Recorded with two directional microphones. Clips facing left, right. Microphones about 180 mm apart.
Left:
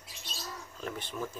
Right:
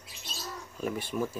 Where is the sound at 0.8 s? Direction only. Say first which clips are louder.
Right 6 dB; 10° right (ahead or behind).